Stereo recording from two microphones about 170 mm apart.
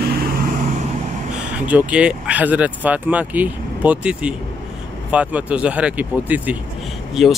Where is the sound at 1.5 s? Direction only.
10° right (ahead or behind).